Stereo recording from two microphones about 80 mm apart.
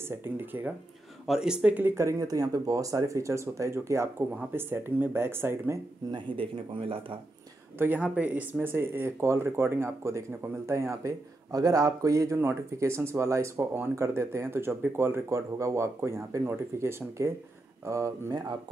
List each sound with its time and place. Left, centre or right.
0.2 s speech: right
1.2 s speech: centre; by 2.0 s right
2.0 s speech: right
6.1 s speech: right
8.0 s speech: centre
8.6 s speech: right